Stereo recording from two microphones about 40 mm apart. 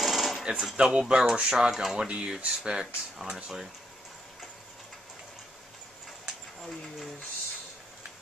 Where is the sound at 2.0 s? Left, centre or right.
Right.